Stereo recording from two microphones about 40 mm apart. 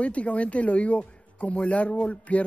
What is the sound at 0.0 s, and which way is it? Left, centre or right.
Speech, left.